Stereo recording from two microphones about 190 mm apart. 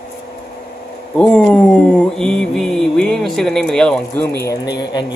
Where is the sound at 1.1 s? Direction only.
5° left (ahead or behind).